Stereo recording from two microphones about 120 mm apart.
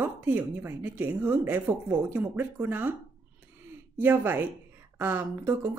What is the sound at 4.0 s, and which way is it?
A woman's voice, 15° right (ahead or behind).